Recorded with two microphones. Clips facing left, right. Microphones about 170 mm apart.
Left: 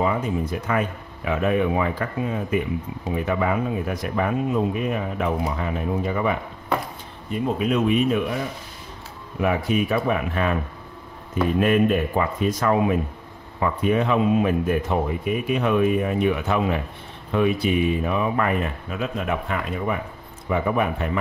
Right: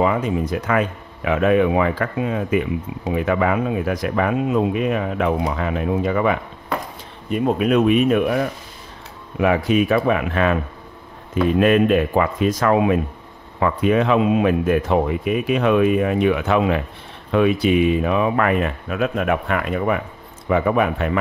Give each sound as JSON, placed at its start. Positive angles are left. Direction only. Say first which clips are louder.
{"t": 0.0, "sound": "speech", "louder": "right 4 dB", "side_deg": -90}
{"t": 7.2, "sound": "speech", "louder": "right 5 dB", "side_deg": -65}
{"t": 9.4, "sound": "speech", "louder": "right 5 dB", "side_deg": -90}
{"t": 11.6, "sound": "speech", "louder": "right 4 dB", "side_deg": -90}
{"t": 20.4, "sound": "speech", "louder": "right 4 dB", "side_deg": -90}